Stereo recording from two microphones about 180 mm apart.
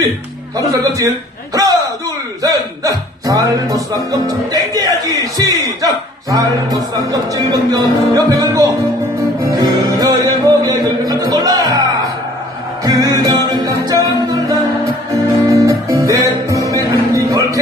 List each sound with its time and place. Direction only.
0.7 s a man's voice: 20° right (ahead or behind)
9.4 s music: 20° right (ahead or behind)